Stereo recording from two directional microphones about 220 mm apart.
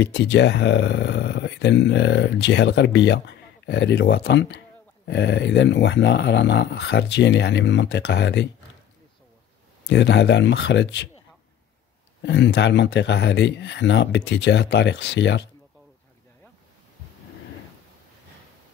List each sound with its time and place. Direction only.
0.0 s speech: 50° left (ahead or behind)
9.8 s speech: 50° left (ahead or behind)
12.2 s speech: 50° left (ahead or behind)